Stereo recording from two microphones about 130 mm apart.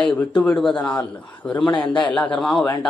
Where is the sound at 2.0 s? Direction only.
10° left (ahead or behind).